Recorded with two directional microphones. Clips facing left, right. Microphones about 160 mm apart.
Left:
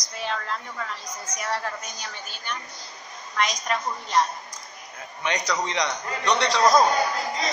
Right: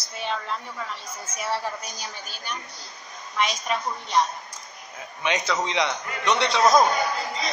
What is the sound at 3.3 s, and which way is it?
Child singing, 5° right (ahead or behind).